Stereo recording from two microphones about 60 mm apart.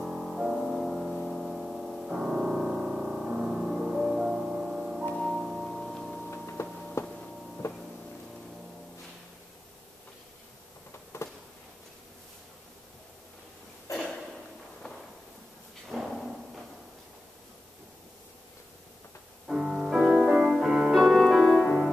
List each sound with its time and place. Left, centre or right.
0.0 s music: centre
6.3 s music: left
7.1 s a sound: centre
13.9 s a sound: left
15.9 s drawer open or close: centre
19.5 s music: centre